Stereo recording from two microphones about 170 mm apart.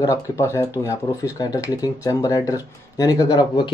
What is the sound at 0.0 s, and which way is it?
Speech, 20° left (ahead or behind).